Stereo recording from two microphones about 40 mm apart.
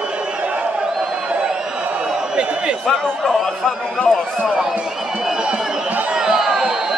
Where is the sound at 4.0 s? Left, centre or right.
Centre.